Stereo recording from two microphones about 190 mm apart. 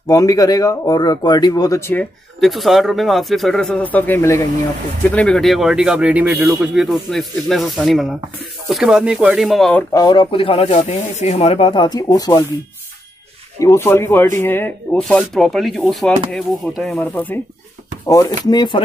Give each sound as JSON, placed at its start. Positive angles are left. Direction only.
{"t": 0.1, "sound": "speech", "side_deg": 20}
{"t": 2.4, "sound": "speech", "side_deg": 0}
{"t": 9.9, "sound": "speech", "side_deg": 20}
{"t": 13.6, "sound": "speech", "side_deg": 15}
{"t": 18.0, "sound": "speech", "side_deg": 20}